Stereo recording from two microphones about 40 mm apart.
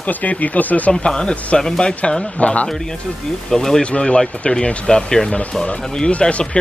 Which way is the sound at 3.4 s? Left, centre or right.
Centre.